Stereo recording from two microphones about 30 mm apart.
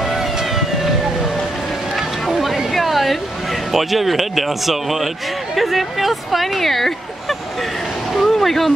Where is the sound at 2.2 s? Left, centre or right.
Centre.